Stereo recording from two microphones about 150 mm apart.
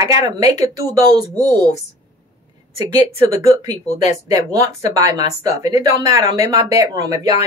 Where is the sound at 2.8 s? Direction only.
20° right (ahead or behind).